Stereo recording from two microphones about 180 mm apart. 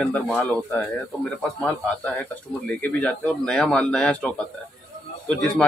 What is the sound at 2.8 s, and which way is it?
Speech, 5° left (ahead or behind).